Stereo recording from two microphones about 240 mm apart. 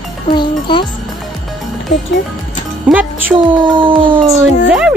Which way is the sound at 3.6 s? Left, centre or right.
Right.